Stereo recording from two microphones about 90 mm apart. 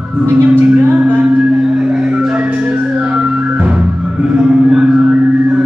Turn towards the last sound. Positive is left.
turn(degrees=-10)  # may be behind; listen again after turning